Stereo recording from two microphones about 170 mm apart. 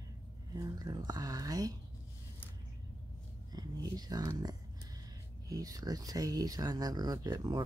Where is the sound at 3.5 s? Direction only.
20° right (ahead or behind).